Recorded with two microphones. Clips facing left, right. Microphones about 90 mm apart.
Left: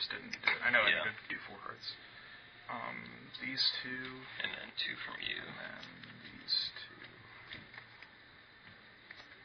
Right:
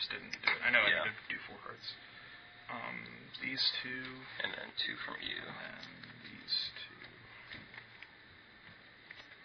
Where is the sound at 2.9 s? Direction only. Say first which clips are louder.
Even; 20° left (ahead or behind).